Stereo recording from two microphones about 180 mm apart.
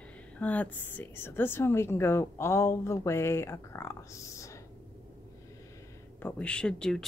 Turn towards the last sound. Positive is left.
turn(degrees=5)  # may be behind; listen again after turning